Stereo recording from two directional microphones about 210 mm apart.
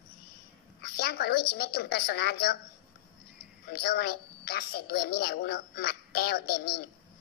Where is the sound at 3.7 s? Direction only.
50° left (ahead or behind).